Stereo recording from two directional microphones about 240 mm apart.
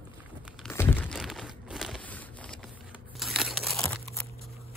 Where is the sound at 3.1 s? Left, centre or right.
Centre.